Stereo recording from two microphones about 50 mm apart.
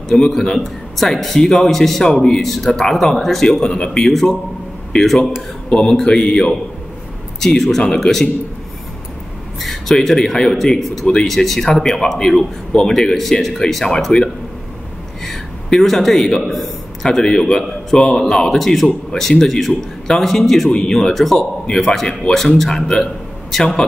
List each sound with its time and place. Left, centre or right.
0.1 s a man's voice: centre
5.7 s speech: centre
9.6 s a sound: centre
10.0 s a man's voice: centre
15.2 s a sound: centre
16.4 s a man's voice: centre